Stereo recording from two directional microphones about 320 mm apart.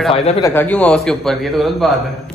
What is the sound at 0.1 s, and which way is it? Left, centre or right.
Speech, centre.